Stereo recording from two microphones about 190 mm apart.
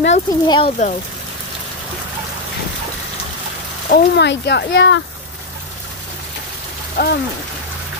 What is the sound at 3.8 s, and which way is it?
Speech, 55° left (ahead or behind).